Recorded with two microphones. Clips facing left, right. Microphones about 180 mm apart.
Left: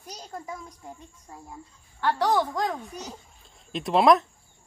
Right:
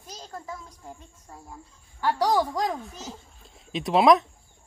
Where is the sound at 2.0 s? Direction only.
10° right (ahead or behind).